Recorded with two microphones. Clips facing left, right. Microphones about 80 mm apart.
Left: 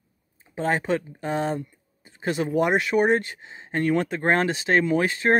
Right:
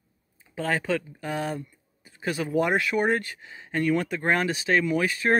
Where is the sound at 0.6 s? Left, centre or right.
Left.